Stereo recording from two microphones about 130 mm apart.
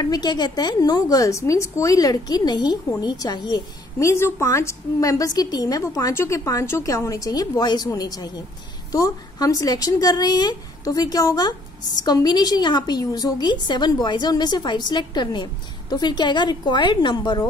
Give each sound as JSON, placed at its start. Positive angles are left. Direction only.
{"t": 0.0, "sound": "a woman's voice", "side_deg": 30}